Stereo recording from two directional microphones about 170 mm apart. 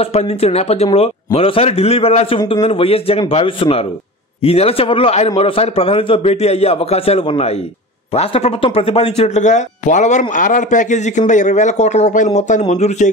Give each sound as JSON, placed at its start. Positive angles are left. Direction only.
{"t": 0.0, "sound": "a man's voice", "side_deg": 35}